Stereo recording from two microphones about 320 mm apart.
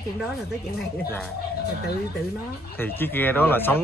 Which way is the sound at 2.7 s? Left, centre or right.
Centre.